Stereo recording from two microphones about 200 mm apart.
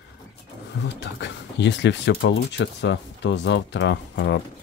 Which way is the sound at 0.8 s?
60° left (ahead or behind).